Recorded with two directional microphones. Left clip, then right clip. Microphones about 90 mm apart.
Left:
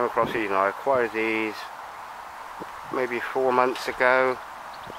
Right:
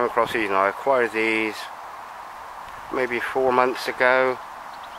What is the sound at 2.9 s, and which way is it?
Speech, 25° right (ahead or behind).